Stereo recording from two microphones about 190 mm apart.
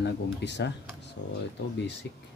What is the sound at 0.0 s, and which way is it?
Speech, 65° left (ahead or behind).